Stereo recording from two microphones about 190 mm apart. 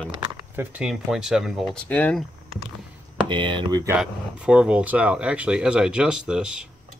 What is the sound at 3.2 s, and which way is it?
Speech, 25° right (ahead or behind).